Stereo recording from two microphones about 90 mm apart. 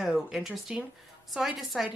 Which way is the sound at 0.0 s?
Centre (ahead or behind).